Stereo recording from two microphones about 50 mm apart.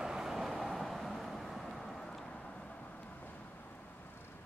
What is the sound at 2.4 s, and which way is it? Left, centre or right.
Vehicle, left.